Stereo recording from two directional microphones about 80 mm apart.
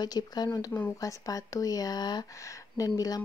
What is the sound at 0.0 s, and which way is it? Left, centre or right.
Speech, left.